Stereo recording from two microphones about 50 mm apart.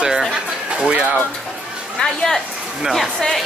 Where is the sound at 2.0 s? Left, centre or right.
Centre.